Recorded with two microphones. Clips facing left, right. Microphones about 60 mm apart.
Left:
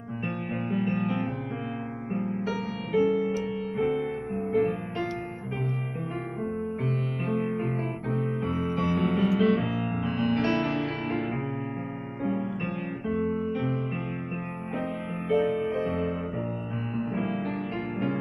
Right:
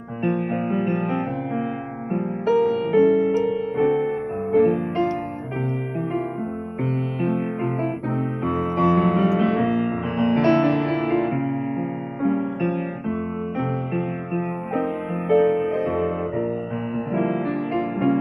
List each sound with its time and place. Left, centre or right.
0.2 s music: right
2.4 s music: right
3.0 s music: right
7.2 s music: right
8.7 s music: right
10.4 s music: right
13.9 s music: right